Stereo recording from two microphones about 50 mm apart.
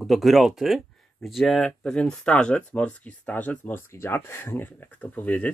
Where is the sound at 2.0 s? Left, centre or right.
Left.